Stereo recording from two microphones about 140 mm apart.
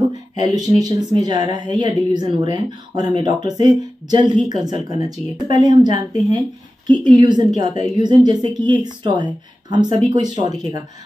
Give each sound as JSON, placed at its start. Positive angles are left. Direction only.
{"t": 0.4, "sound": "speech", "side_deg": -25}